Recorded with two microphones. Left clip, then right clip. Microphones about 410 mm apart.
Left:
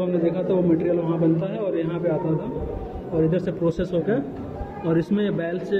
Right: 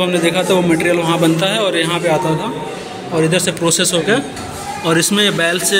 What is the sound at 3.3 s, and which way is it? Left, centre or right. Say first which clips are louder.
A man's voice: right 9 dB; left.